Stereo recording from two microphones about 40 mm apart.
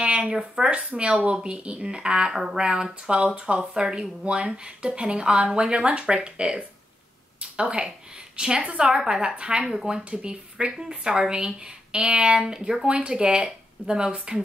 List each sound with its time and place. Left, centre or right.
0.0 s speech: right
12.9 s speech: right